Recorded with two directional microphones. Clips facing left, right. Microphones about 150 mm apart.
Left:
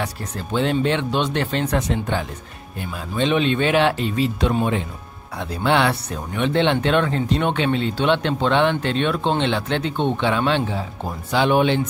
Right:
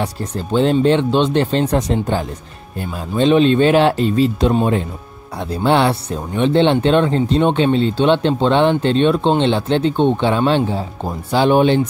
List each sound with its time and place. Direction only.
0.0 s speech: 30° right (ahead or behind)